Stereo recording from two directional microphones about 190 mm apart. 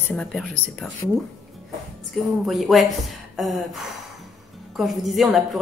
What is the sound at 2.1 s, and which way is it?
A woman's voice, centre (ahead or behind).